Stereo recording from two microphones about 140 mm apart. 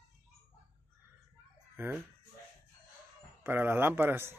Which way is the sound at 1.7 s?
15° right (ahead or behind).